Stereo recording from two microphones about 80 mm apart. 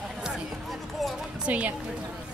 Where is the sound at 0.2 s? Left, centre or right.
Centre.